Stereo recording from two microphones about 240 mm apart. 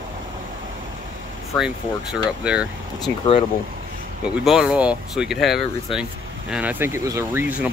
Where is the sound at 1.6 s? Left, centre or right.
Centre.